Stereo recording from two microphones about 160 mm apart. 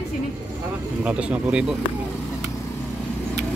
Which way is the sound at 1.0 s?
10° right (ahead or behind).